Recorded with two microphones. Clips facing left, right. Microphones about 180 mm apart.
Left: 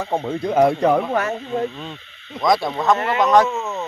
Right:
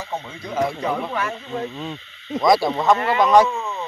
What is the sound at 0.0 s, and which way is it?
Speech, 55° left (ahead or behind).